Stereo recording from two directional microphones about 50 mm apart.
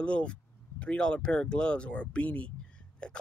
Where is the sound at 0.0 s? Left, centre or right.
Left.